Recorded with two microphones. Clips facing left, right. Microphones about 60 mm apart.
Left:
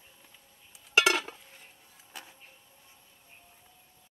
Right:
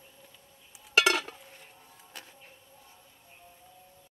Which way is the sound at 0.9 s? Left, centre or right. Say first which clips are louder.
Even; centre.